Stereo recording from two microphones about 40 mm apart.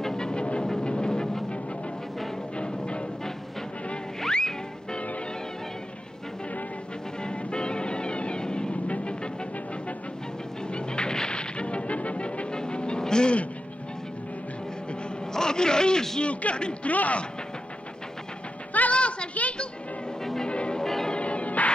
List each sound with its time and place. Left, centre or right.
0.0 s music: centre
2.5 s music: left
4.3 s music: left
7.2 s music: left
10.7 s music: left
15.3 s a sound: centre
16.2 s a man's voice: left
18.7 s music: left
18.9 s a sound: left
20.4 s music: left
20.8 s change ringing: centre
21.1 s music: left